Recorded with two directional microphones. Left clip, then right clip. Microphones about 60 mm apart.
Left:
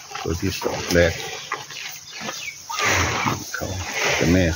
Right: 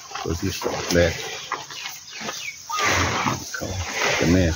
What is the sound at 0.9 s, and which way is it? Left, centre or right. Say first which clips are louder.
Speech: left 2 dB; left.